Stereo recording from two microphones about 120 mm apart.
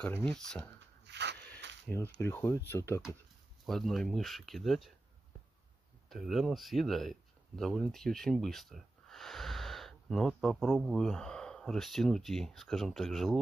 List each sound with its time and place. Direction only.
0.2 s speech: 5° left (ahead or behind)
1.5 s speech: 20° left (ahead or behind)
3.6 s speech: centre (ahead or behind)
6.0 s speech: centre (ahead or behind)